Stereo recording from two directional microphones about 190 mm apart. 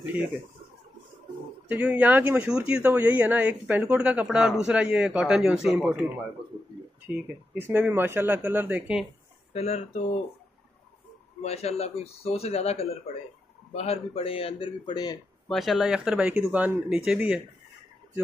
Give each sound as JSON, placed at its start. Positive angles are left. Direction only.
{"t": 1.7, "sound": "speech", "side_deg": -10}
{"t": 7.1, "sound": "speech", "side_deg": -10}
{"t": 9.5, "sound": "speech", "side_deg": 35}
{"t": 11.4, "sound": "speech", "side_deg": 35}
{"t": 13.7, "sound": "speech", "side_deg": 30}
{"t": 15.4, "sound": "speech", "side_deg": 0}